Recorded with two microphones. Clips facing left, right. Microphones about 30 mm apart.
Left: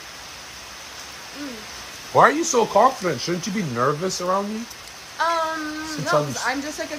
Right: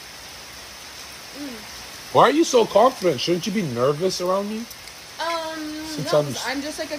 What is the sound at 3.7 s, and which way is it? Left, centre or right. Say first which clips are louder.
Speech: even; left.